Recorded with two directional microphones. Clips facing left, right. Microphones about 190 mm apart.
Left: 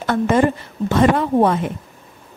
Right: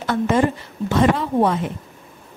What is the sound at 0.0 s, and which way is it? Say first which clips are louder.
A woman's voice: left 2 dB; 50° left (ahead or behind).